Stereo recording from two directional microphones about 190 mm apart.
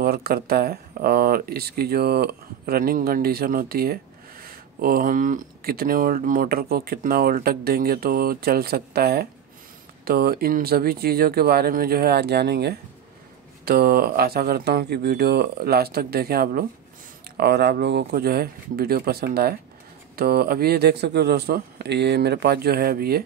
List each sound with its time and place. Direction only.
0.0 s speech: 55° right (ahead or behind)